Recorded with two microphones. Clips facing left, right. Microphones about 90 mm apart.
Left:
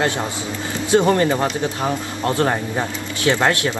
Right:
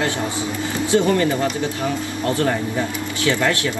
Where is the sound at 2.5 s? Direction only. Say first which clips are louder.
Even; 60° left (ahead or behind).